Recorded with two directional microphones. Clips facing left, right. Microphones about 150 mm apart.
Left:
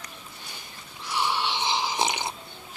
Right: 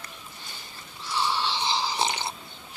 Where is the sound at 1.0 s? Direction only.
15° left (ahead or behind).